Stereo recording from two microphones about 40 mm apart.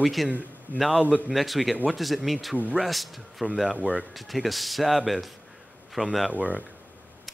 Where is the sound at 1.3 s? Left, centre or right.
Centre.